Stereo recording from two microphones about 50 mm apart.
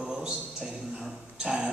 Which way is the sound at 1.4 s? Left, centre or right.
Centre.